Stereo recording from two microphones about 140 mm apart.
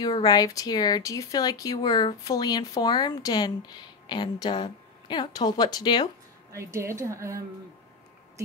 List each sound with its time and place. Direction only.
0.0 s speech: 30° left (ahead or behind)
6.5 s a woman's voice: 20° right (ahead or behind)